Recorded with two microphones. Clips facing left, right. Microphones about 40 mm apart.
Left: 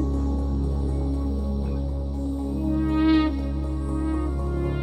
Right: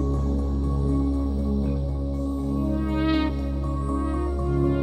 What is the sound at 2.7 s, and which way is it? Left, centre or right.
Music, centre.